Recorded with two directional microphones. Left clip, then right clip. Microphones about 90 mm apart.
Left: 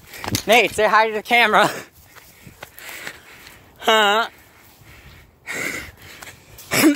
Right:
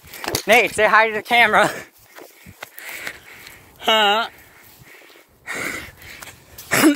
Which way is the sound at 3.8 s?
40° left (ahead or behind).